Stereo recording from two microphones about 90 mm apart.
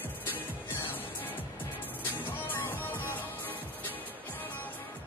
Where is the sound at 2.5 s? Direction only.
25° left (ahead or behind).